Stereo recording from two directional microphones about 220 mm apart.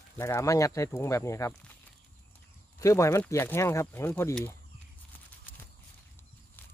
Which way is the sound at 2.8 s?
15° left (ahead or behind).